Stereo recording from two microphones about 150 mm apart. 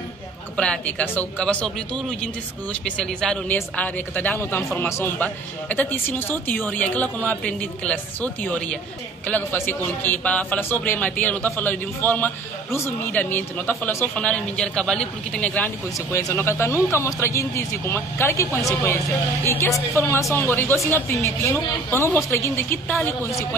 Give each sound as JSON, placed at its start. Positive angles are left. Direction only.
{"t": 0.6, "sound": "speech", "side_deg": 10}